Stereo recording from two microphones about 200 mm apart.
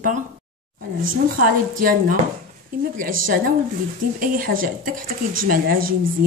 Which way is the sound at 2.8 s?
45° right (ahead or behind).